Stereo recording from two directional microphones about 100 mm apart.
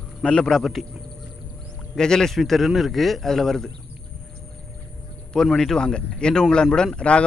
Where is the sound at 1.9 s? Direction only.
5° left (ahead or behind).